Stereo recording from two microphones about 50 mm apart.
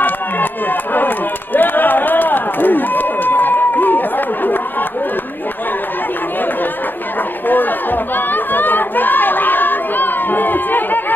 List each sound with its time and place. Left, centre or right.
0.0 s run: left
7.4 s chatter: left